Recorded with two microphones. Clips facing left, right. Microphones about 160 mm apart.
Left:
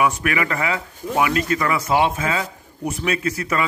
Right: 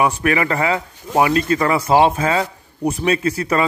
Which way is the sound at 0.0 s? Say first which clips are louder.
Right 3 dB; 35° right (ahead or behind).